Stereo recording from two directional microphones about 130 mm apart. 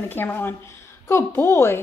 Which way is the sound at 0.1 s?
15° left (ahead or behind).